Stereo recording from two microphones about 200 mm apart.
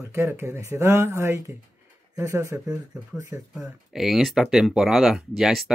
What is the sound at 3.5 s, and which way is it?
Speech, 5° right (ahead or behind).